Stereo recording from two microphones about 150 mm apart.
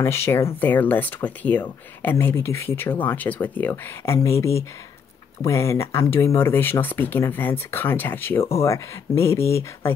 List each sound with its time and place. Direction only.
0.0 s speech: 15° left (ahead or behind)